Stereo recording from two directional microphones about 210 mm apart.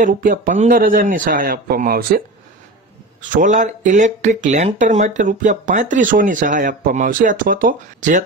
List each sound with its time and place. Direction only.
0.0 s speech: 40° right (ahead or behind)